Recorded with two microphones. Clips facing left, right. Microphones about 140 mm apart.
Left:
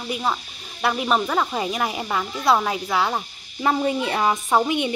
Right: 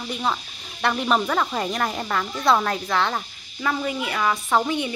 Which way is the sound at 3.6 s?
30° left (ahead or behind).